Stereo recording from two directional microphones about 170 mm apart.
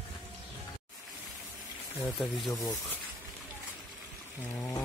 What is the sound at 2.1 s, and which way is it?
Speech, centre (ahead or behind).